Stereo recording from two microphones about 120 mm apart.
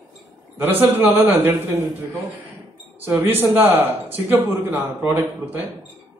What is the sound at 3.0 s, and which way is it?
Speech, 20° right (ahead or behind).